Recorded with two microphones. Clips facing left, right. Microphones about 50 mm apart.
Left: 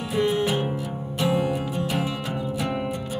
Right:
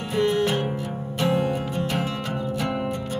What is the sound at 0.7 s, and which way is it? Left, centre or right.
Music, centre.